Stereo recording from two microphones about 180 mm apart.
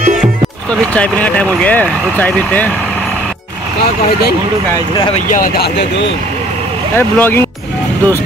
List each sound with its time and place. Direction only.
0.9 s speech: 5° left (ahead or behind)
5.3 s speech: 55° left (ahead or behind)
7.0 s speech: 10° left (ahead or behind)